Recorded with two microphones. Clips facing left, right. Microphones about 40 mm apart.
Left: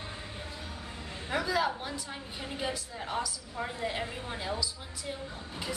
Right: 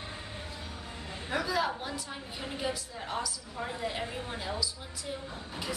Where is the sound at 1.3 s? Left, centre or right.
Centre.